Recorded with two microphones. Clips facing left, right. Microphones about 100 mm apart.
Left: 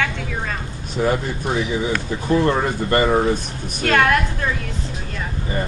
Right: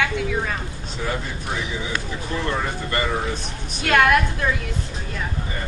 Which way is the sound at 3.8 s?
Centre (ahead or behind).